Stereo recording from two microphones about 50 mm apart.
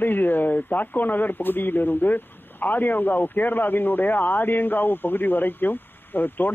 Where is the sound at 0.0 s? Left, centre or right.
Left.